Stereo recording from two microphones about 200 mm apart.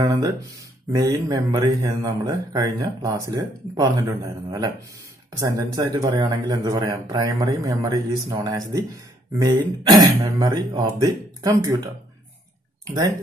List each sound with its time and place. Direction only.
0.0 s speech: 15° right (ahead or behind)
12.8 s speech: 15° right (ahead or behind)